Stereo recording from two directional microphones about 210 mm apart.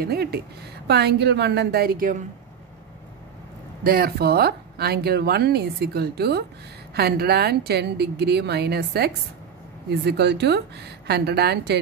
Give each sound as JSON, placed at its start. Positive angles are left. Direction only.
{"t": 0.0, "sound": "speech", "side_deg": -50}
{"t": 3.8, "sound": "speech", "side_deg": -45}